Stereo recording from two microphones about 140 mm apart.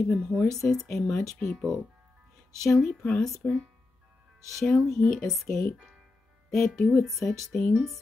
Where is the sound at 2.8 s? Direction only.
5° left (ahead or behind).